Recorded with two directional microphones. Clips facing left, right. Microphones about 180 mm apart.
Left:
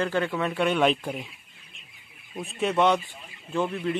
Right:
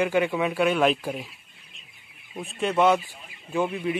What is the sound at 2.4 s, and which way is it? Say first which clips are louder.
A man's voice: right 1 dB; centre (ahead or behind).